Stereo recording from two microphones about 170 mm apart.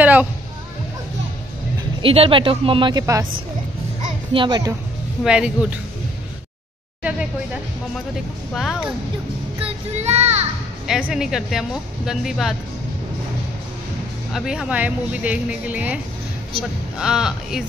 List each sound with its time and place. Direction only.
0.0 s a sound: 10° right (ahead or behind)
2.0 s speech: 30° right (ahead or behind)
4.3 s a child's voice: 25° right (ahead or behind)
5.2 s a woman's voice: 5° right (ahead or behind)
7.0 s speech: 5° right (ahead or behind)
8.5 s a woman's voice: centre (ahead or behind)
9.6 s child singing: 40° right (ahead or behind)
11.1 s a woman's voice: 5° right (ahead or behind)
14.3 s speech: 5° right (ahead or behind)
17.0 s a woman's voice: 5° right (ahead or behind)